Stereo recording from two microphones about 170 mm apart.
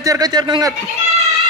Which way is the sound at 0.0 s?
20° right (ahead or behind).